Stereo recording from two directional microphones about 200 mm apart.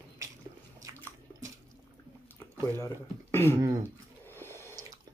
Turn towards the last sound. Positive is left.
turn(degrees=10)  # may be behind; listen again after turning